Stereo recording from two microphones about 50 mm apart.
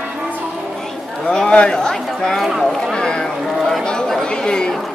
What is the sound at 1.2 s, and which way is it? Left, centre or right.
Speech, centre.